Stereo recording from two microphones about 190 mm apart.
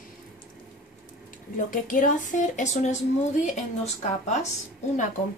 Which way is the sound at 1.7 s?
45° left (ahead or behind).